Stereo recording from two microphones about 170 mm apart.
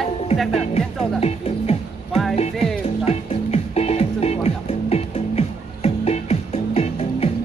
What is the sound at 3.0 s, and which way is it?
Music, 35° left (ahead or behind).